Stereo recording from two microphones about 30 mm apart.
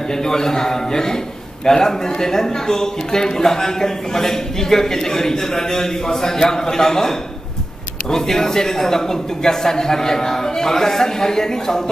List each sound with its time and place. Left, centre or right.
0.1 s a man's voice: centre